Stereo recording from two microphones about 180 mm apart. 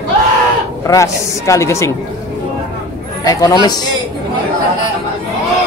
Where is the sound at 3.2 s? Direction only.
20° left (ahead or behind).